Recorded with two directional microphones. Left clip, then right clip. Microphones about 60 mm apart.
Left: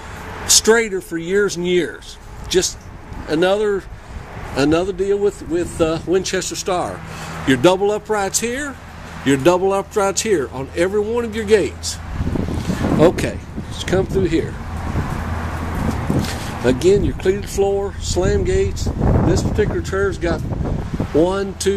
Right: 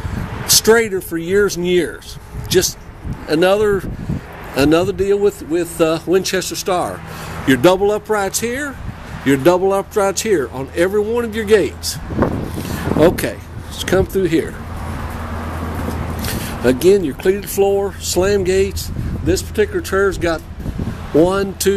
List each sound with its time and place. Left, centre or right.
0.5 s speech: centre
2.5 s a man's voice: right
12.5 s vehicle: right
13.7 s a man's voice: right
16.2 s speech: right
17.6 s speech: right
21.2 s a man's voice: right